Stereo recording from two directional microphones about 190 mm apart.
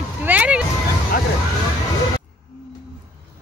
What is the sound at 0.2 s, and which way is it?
Vehicle, 10° right (ahead or behind).